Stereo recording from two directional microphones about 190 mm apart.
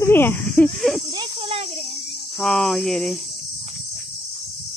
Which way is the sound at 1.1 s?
25° right (ahead or behind).